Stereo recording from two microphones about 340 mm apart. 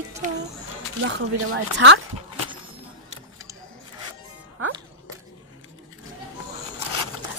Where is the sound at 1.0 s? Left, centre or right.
Right.